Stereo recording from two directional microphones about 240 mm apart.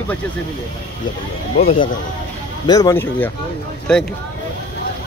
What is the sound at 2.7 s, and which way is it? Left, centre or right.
Speech, centre.